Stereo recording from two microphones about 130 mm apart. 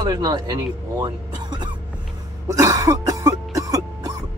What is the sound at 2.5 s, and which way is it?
Cough, 25° right (ahead or behind).